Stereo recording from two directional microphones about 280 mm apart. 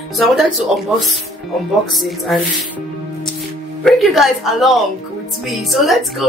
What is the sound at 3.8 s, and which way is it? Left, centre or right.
A woman's voice, centre.